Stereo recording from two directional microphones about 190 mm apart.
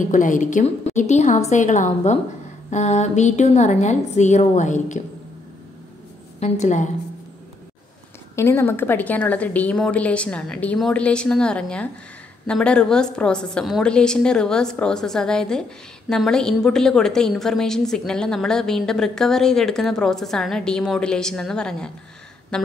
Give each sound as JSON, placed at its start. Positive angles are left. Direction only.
{"t": 0.1, "sound": "a woman's voice", "side_deg": 45}
{"t": 6.4, "sound": "a woman's voice", "side_deg": 35}
{"t": 8.4, "sound": "a woman's voice", "side_deg": 15}
{"t": 22.5, "sound": "a sound", "side_deg": 5}